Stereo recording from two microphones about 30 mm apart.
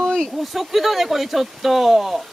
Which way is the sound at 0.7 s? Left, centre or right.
Centre.